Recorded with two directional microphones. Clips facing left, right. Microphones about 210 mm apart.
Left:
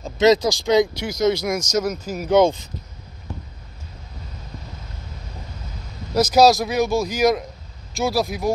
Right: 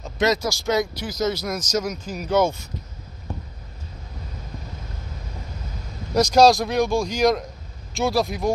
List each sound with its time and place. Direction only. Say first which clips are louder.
0.2 s speech: left 6 dB; 20° left (ahead or behind)
6.1 s speech: even; 5° left (ahead or behind)